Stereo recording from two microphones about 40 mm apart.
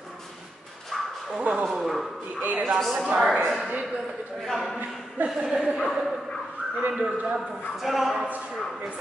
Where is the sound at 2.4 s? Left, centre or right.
Right.